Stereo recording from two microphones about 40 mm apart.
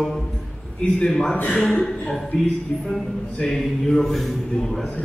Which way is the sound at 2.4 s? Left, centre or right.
Centre.